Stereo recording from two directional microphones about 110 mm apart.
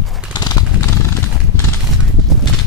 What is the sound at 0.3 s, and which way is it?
Horse, 40° left (ahead or behind).